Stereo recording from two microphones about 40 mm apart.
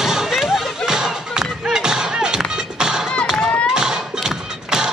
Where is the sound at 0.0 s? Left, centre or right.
Centre.